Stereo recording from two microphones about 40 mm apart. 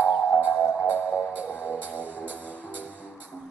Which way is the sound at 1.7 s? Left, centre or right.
Right.